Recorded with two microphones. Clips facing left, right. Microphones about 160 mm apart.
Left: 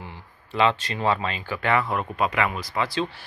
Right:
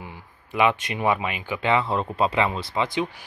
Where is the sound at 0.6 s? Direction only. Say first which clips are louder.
Right 1 dB; 15° right (ahead or behind).